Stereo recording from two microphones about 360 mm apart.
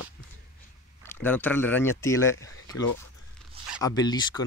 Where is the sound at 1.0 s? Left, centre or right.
Centre.